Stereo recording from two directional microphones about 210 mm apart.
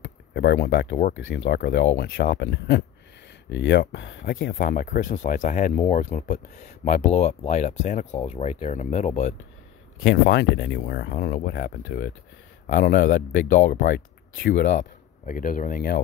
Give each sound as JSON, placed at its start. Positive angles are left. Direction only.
{"t": 0.0, "sound": "a sound", "side_deg": 55}
{"t": 1.1, "sound": "speech", "side_deg": 60}
{"t": 10.0, "sound": "speech", "side_deg": 55}
{"t": 13.3, "sound": "speech", "side_deg": 60}
{"t": 13.7, "sound": "speech", "side_deg": 45}
{"t": 14.8, "sound": "speech", "side_deg": 40}